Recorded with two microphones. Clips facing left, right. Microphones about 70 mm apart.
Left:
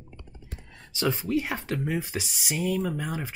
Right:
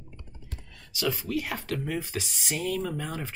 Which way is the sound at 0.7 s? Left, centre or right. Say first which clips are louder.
Left 2 dB; left.